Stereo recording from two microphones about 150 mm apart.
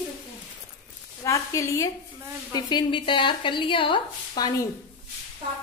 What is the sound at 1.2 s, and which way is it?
A woman's voice, 20° left (ahead or behind).